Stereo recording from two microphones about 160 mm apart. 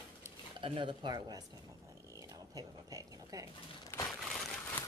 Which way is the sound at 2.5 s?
25° right (ahead or behind).